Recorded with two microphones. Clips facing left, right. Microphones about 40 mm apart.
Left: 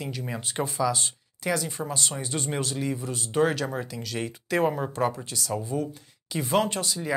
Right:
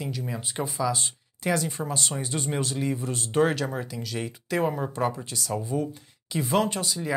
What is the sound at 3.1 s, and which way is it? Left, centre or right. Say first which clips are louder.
Speech: right 2 dB; right.